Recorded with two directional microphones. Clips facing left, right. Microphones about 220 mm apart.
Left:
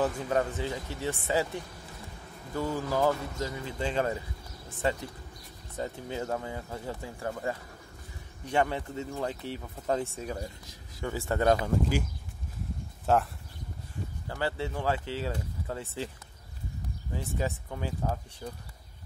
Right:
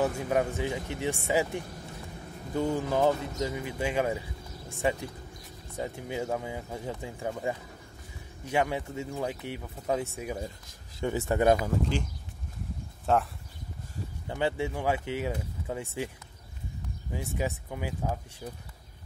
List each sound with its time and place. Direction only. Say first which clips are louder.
0.0 s speech: right 1 dB; 10° right (ahead or behind)
13.0 s speech: even; centre (ahead or behind)
14.2 s speech: right 3 dB; 20° right (ahead or behind)
17.1 s speech: right 1 dB; 10° right (ahead or behind)